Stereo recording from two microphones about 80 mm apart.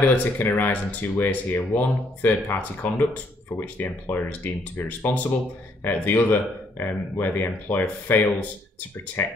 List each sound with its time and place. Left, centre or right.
0.0 s speech: left